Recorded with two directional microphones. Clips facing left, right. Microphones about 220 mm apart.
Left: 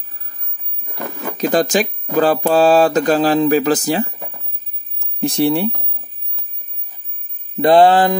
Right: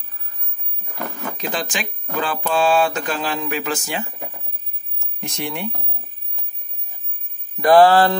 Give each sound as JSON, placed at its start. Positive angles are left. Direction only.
{"t": 1.4, "sound": "speech", "side_deg": 40}
{"t": 4.9, "sound": "a sound", "side_deg": 30}
{"t": 7.6, "sound": "mantra", "side_deg": 20}